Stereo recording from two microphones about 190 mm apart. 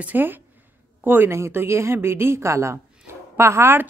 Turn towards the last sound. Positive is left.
turn(degrees=-15)  # may be behind; listen again after turning